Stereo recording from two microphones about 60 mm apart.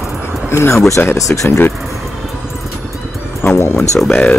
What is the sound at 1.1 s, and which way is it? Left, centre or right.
Speech, left.